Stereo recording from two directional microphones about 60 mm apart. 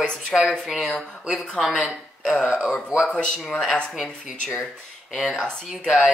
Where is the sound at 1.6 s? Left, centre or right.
Centre.